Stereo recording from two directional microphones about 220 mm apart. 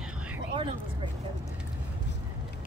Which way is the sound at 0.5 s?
25° right (ahead or behind).